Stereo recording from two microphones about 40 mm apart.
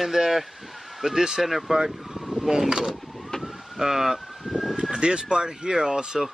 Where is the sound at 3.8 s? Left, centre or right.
Centre.